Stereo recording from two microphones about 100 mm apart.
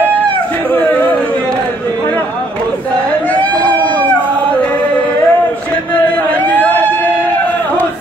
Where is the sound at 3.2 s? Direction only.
15° left (ahead or behind).